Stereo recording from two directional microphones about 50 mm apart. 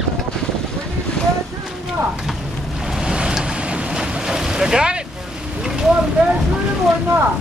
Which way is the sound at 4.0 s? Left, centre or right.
Centre.